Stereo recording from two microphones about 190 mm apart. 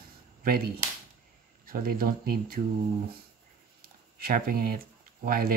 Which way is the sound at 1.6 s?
50° right (ahead or behind).